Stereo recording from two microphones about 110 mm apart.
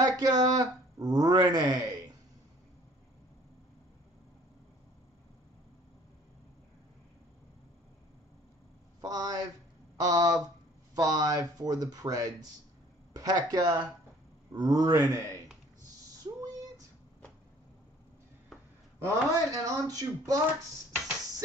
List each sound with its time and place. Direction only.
0.0 s speech: 35° right (ahead or behind)
9.0 s speech: 35° right (ahead or behind)
19.0 s speech: 30° right (ahead or behind)